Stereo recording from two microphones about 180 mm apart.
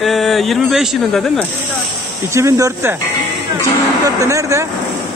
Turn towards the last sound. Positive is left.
turn(degrees=-15)  # may be behind; listen again after turning